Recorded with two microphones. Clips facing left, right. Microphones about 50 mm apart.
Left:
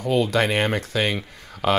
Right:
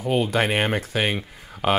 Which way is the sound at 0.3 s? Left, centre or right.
Centre.